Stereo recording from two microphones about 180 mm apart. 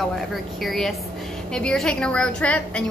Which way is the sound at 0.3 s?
Centre (ahead or behind).